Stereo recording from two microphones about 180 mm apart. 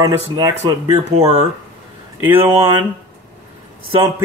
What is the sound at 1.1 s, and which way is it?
Speech, 35° right (ahead or behind).